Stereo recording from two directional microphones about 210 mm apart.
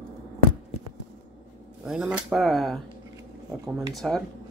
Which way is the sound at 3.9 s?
5° left (ahead or behind).